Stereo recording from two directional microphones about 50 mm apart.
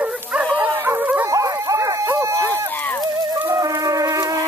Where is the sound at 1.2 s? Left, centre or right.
Right.